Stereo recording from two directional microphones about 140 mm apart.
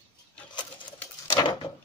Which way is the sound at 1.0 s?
20° left (ahead or behind).